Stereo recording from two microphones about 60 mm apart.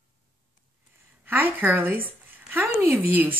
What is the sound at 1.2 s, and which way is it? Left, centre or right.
Speech, right.